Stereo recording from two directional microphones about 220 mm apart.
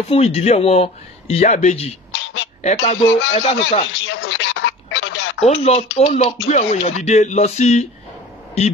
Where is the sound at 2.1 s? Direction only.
55° left (ahead or behind).